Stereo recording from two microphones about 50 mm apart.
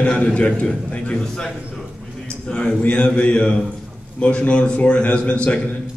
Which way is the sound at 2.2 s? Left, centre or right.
Centre.